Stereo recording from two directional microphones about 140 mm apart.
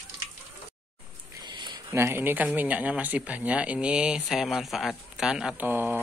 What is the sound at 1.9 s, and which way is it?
Speech, 15° right (ahead or behind).